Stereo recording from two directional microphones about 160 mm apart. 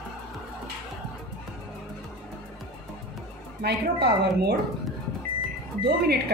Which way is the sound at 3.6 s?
90° right.